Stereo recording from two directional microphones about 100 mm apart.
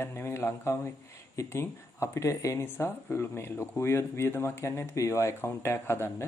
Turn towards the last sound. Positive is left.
turn(degrees=25)  # may be behind; listen again after turning